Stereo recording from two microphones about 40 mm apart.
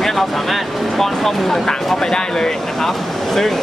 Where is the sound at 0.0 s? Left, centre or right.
Centre.